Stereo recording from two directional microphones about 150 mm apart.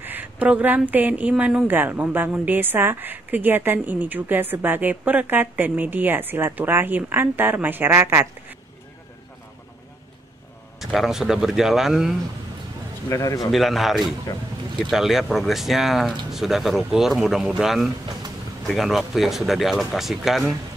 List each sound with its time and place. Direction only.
0.0 s a woman's voice: 10° right (ahead or behind)
10.8 s speech: centre (ahead or behind)
13.1 s a man's voice: 20° left (ahead or behind)
13.4 s speech: centre (ahead or behind)